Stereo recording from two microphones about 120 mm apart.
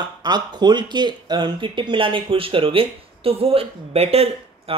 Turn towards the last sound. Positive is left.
turn(degrees=-55)  # may be behind; listen again after turning